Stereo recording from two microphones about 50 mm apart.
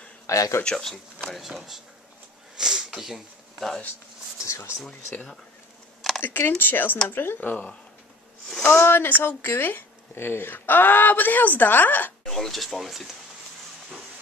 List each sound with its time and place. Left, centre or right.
0.3 s speech: left
0.7 s speech: centre
1.2 s speech: centre
2.5 s sniff: centre
4.5 s speech: left
6.2 s speech: left
8.6 s speech: left
12.3 s speech: centre